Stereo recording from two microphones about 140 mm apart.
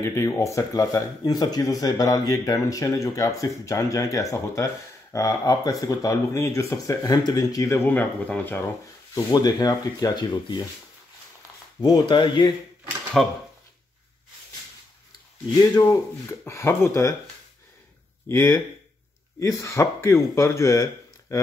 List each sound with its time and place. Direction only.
0.0 s speech: 20° left (ahead or behind)
9.1 s speech: 30° left (ahead or behind)
11.8 s speech: 30° left (ahead or behind)
13.2 s speech: centre (ahead or behind)
15.6 s speech: 20° left (ahead or behind)
18.3 s speech: 20° left (ahead or behind)